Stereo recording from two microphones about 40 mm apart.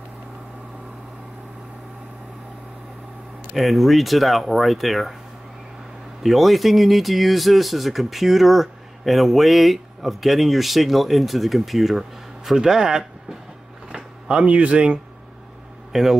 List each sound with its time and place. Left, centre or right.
3.5 s speech: centre
6.2 s speech: centre; by 15.0 s right
15.9 s a man's voice: centre